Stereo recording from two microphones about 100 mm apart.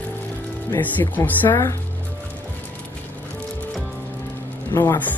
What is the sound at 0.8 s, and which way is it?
Speech, 15° left (ahead or behind).